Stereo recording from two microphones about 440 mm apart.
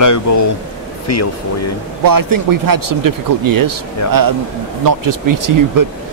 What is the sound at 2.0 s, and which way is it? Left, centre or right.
Speech, right.